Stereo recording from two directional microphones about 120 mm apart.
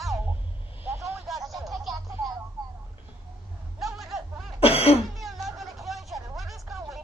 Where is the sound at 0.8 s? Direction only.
25° right (ahead or behind).